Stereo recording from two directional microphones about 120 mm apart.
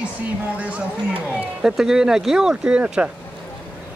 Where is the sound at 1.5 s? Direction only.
5° right (ahead or behind).